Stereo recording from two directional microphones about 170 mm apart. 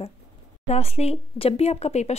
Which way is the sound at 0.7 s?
35° left (ahead or behind).